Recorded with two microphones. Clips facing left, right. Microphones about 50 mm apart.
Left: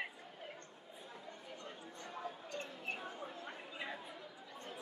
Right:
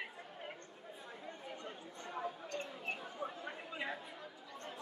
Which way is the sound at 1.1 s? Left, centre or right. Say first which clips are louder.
Right 3 dB; right.